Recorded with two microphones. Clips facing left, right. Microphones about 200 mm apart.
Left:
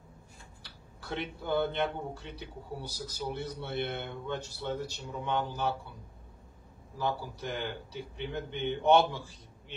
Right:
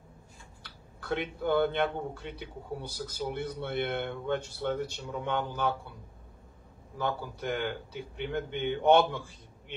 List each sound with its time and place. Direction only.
0.6 s speech: 55° right (ahead or behind)
7.0 s speech: 55° right (ahead or behind)